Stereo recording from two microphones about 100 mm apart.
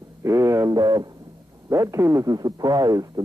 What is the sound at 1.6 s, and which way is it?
Speech, 30° right (ahead or behind).